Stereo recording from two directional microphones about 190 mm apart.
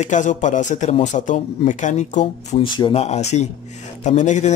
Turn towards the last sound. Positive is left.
turn(degrees=40)  # may be behind; listen again after turning